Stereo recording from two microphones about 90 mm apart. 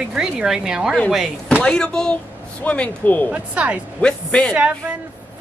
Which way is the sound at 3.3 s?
15° right (ahead or behind).